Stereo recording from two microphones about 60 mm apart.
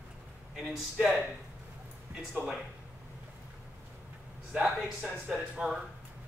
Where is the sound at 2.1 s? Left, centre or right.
Right.